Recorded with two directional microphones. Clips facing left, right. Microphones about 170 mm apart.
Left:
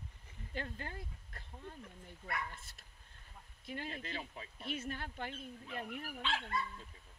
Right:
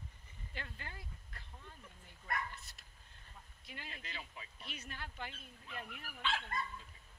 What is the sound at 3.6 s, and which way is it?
Speech, 50° left (ahead or behind).